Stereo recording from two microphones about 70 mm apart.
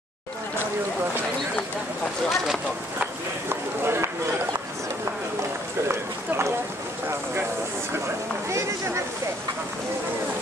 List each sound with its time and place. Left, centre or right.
2.2 s speech: centre
3.4 s run: right
5.9 s run: right
8.5 s a sound: right